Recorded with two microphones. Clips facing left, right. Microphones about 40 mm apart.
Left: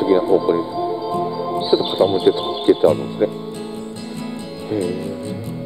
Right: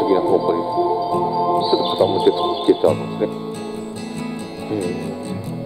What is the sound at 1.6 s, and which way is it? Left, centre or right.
Music, left.